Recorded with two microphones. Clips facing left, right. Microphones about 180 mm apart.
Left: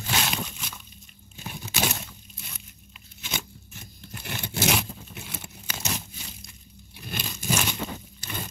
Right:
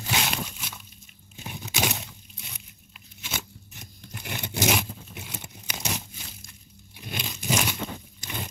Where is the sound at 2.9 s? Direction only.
5° right (ahead or behind).